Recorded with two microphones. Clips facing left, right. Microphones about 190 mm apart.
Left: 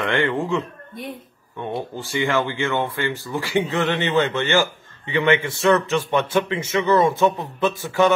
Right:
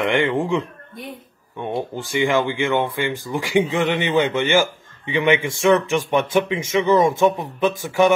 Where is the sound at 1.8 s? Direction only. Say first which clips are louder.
Right 4 dB; 15° right (ahead or behind).